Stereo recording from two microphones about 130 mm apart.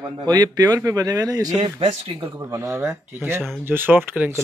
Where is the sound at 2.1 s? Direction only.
20° right (ahead or behind).